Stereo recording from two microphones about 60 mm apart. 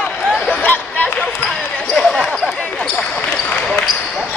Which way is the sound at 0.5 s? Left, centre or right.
Left.